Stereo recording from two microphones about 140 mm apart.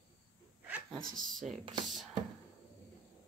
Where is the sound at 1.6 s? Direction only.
30° right (ahead or behind).